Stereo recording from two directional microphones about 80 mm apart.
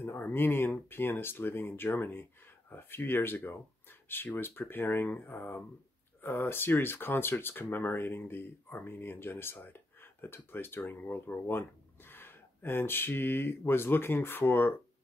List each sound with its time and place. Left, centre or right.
0.0 s speech: left